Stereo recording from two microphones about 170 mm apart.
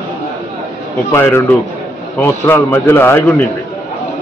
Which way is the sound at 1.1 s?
15° left (ahead or behind).